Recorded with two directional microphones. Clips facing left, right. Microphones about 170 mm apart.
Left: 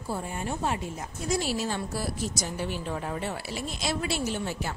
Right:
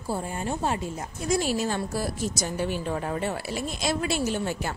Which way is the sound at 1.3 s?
45° right (ahead or behind).